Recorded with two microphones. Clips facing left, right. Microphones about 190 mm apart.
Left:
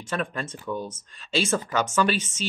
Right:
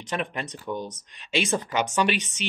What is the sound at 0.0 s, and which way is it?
Speech, 20° right (ahead or behind).